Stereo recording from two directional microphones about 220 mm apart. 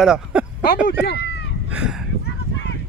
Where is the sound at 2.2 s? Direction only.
50° left (ahead or behind).